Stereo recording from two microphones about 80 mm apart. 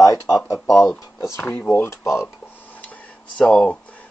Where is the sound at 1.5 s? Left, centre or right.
Left.